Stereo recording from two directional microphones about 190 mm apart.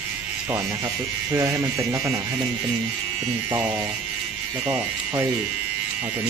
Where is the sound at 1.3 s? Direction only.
15° right (ahead or behind).